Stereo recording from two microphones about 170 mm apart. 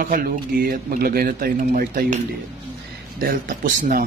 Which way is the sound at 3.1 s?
55° right (ahead or behind).